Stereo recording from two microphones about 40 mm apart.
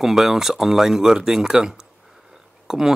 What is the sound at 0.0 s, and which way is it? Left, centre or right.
Speech, centre.